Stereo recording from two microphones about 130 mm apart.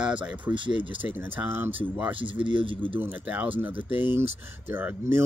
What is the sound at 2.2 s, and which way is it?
Speech, 40° right (ahead or behind).